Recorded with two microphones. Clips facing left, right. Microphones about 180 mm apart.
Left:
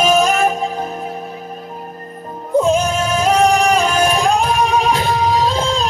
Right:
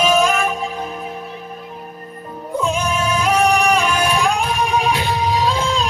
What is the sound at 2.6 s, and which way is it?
Music, 40° left (ahead or behind).